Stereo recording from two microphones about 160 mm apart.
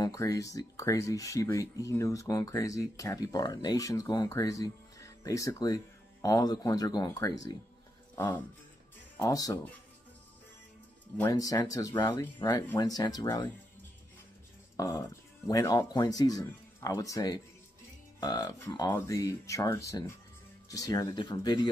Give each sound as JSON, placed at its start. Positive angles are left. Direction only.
{"t": 0.0, "sound": "speech", "side_deg": 20}
{"t": 9.1, "sound": "speech", "side_deg": 20}
{"t": 11.2, "sound": "speech", "side_deg": 20}
{"t": 14.8, "sound": "speech", "side_deg": 20}